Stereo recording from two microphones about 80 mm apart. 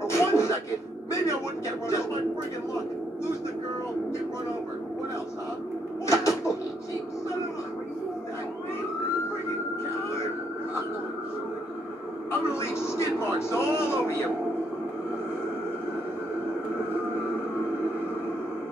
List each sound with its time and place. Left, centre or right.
0.0 s music: left
6.0 s a sound: left
12.5 s speech: left